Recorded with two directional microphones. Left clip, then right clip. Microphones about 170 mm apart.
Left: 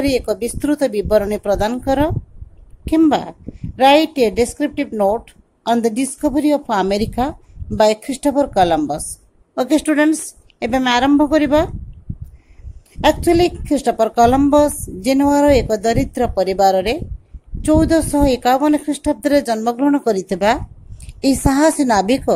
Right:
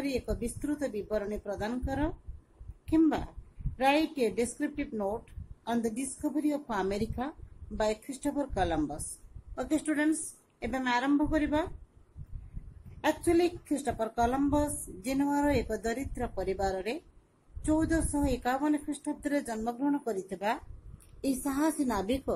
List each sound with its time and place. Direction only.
0.0 s a woman's voice: 50° left (ahead or behind)
13.0 s a woman's voice: 45° left (ahead or behind)